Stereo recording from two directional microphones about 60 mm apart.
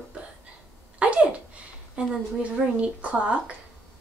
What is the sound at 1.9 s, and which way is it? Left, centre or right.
Speech, right.